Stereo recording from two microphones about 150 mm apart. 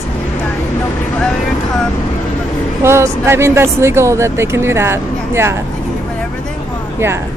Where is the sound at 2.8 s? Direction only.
15° right (ahead or behind).